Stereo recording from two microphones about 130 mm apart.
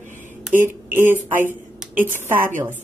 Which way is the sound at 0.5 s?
15° right (ahead or behind).